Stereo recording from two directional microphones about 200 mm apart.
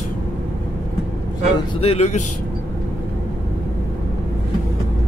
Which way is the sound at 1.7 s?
30° left (ahead or behind).